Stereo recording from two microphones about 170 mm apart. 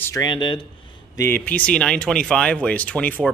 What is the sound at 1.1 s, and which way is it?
Speech, 15° left (ahead or behind).